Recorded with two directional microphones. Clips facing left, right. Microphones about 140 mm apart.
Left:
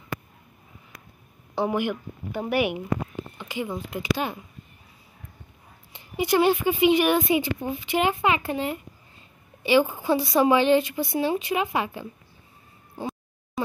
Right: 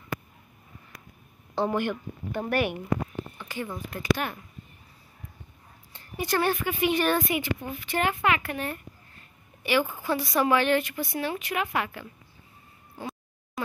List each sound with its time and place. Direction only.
1.5 s speech: 10° left (ahead or behind)
5.9 s a woman's voice: 15° left (ahead or behind)